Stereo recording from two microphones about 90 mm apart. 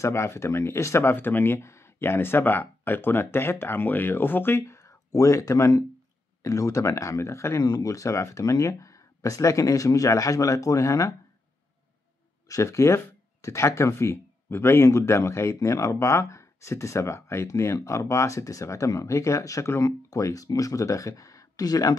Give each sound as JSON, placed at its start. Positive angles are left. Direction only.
{"t": 0.0, "sound": "speech", "side_deg": 30}
{"t": 7.6, "sound": "speech", "side_deg": 45}
{"t": 12.4, "sound": "speech", "side_deg": 35}